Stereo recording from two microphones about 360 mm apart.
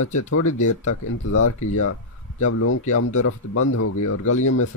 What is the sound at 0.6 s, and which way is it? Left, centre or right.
Speech, left.